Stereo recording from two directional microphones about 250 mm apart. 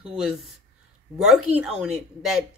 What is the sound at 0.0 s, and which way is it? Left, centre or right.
Speech, centre.